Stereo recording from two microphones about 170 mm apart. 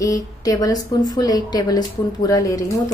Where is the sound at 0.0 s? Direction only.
20° left (ahead or behind).